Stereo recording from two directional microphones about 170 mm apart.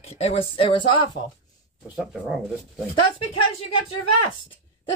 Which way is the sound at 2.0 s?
5° right (ahead or behind).